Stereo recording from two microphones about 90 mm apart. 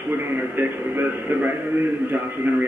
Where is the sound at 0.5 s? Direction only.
20° right (ahead or behind).